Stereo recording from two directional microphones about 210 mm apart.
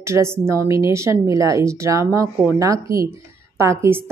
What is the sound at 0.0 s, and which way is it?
A woman's voice, 15° right (ahead or behind).